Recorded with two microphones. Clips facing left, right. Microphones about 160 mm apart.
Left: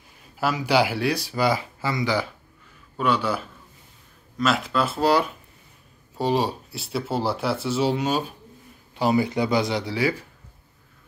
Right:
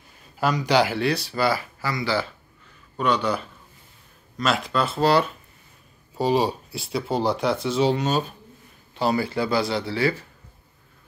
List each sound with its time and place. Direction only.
0.4 s speech: 5° left (ahead or behind)
3.0 s speech: 5° left (ahead or behind)
6.1 s speech: centre (ahead or behind)